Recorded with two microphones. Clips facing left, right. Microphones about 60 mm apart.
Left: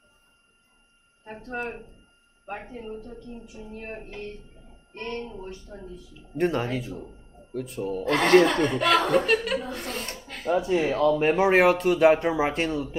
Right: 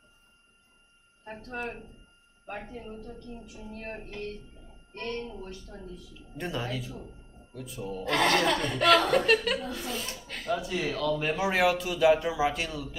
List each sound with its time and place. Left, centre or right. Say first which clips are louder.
1.2 s a woman's voice: left 3 dB; centre
6.3 s speech: left 8 dB; left
7.5 s speech: left 7 dB; left
8.0 s a woman's voice: left 7 dB; left
8.7 s speech: right 2 dB; centre
9.8 s speech: left 2 dB; left
10.4 s speech: left 7 dB; left